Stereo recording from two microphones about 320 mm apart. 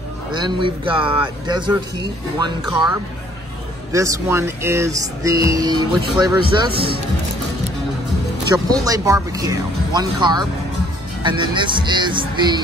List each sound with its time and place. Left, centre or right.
0.3 s speech: centre
3.9 s speech: centre
6.7 s speech: right
8.5 s speech: centre